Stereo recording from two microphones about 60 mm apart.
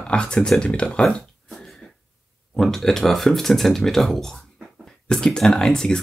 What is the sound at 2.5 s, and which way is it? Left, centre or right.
Speech, centre.